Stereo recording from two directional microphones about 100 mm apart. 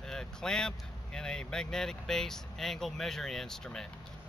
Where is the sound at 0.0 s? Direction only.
5° left (ahead or behind).